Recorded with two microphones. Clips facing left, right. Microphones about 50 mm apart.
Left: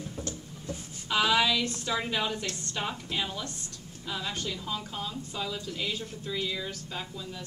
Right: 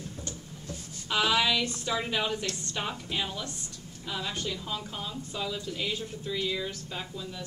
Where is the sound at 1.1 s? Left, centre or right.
Centre.